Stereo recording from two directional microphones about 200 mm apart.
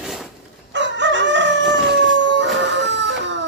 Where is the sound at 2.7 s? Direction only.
60° right (ahead or behind).